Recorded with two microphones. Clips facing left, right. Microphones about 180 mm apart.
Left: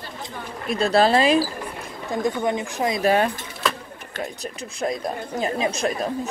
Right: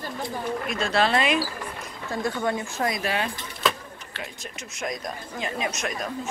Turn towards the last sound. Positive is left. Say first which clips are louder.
# left 6 dB
turn(degrees=30)  # may be behind; listen again after turning